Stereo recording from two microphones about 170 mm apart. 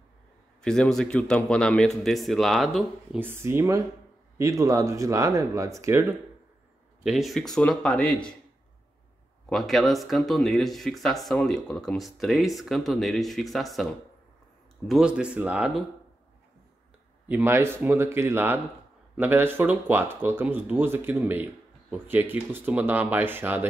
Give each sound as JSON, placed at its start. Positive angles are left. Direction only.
{"t": 0.6, "sound": "speech", "side_deg": 5}
{"t": 3.2, "sound": "speech", "side_deg": -15}
{"t": 7.0, "sound": "speech", "side_deg": 0}
{"t": 9.5, "sound": "speech", "side_deg": 0}
{"t": 14.9, "sound": "speech", "side_deg": -5}
{"t": 17.3, "sound": "speech", "side_deg": -15}